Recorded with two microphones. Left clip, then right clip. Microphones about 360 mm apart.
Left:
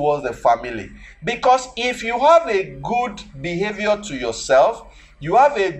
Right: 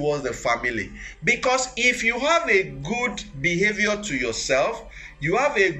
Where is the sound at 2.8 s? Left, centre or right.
Left.